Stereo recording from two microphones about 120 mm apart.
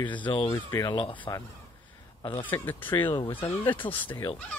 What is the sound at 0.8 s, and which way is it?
Speech, 45° left (ahead or behind).